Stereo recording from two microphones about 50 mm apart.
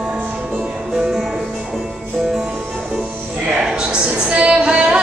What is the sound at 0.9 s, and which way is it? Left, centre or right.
Music, centre.